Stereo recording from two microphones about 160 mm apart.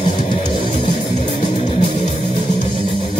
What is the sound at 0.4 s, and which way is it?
Music, 50° left (ahead or behind).